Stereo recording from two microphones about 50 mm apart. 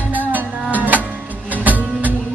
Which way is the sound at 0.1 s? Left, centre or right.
Right.